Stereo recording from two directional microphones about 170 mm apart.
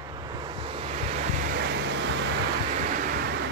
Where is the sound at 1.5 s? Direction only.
75° right (ahead or behind); by 2.1 s 90° right.